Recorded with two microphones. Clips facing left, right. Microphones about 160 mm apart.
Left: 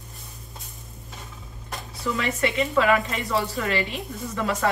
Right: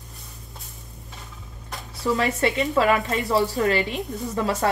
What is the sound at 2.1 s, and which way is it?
Speech, 35° right (ahead or behind).